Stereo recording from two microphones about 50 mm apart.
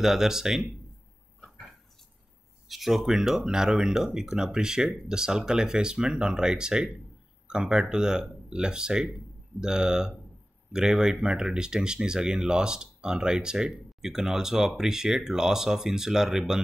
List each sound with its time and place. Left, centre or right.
0.0 s speech: centre
2.7 s speech: centre